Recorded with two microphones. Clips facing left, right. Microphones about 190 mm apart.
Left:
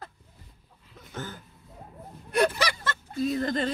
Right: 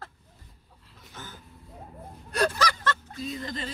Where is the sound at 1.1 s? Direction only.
50° left (ahead or behind).